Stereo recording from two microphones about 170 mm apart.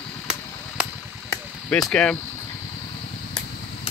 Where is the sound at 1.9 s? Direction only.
5° left (ahead or behind).